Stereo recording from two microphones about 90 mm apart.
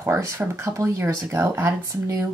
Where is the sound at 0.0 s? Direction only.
35° right (ahead or behind).